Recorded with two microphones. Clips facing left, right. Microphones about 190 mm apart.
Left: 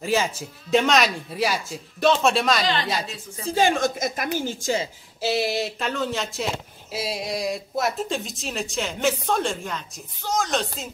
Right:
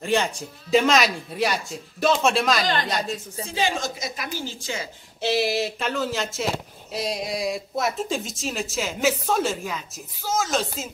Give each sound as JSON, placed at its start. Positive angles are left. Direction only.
{"t": 0.0, "sound": "speech", "side_deg": 5}
{"t": 2.6, "sound": "a woman's voice", "side_deg": -45}
{"t": 3.4, "sound": "a woman's voice", "side_deg": 50}
{"t": 5.2, "sound": "speech", "side_deg": 0}